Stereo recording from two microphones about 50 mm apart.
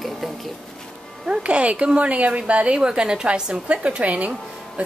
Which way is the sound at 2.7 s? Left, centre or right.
Centre.